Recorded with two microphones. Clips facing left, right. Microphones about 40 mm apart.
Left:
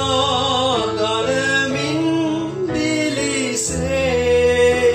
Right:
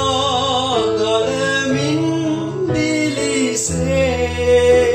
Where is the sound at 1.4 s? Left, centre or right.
Left.